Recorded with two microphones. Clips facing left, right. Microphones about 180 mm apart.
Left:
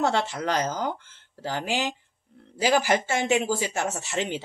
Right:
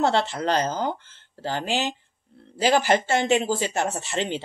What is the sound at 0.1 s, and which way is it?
A woman's voice, 10° left (ahead or behind).